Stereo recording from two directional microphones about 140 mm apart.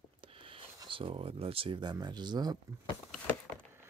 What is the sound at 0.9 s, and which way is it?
Speech, 40° right (ahead or behind).